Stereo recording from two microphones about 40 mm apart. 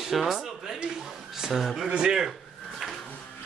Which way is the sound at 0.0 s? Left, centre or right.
Centre.